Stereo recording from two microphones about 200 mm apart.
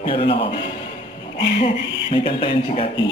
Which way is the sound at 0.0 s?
30° left (ahead or behind).